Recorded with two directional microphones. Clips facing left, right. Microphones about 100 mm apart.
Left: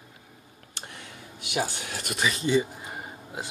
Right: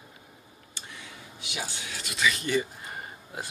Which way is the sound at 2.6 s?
15° left (ahead or behind).